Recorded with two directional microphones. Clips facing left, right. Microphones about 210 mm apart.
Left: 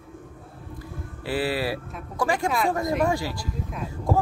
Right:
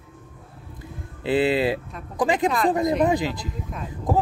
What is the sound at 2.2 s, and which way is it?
Speech, 20° right (ahead or behind).